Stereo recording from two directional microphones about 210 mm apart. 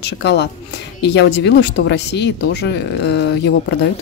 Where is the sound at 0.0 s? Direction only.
50° left (ahead or behind).